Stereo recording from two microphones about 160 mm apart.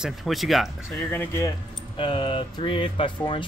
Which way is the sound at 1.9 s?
30° left (ahead or behind).